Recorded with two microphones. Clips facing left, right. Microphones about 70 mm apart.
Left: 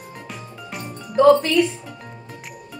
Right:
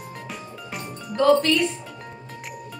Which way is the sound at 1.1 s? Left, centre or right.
Centre.